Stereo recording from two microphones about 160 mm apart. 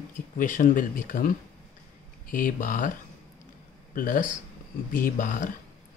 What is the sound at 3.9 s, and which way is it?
Speech, 60° left (ahead or behind).